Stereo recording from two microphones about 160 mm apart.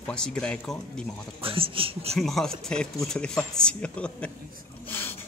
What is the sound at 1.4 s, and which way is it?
Speech, 35° right (ahead or behind).